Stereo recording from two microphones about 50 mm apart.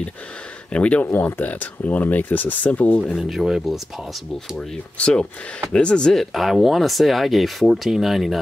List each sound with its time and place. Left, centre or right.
0.7 s speech: left
1.0 s speech: left
3.2 s speech: centre
4.9 s speech: centre
6.1 s speech: centre